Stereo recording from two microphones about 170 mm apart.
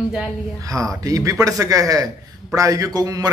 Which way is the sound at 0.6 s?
20° right (ahead or behind).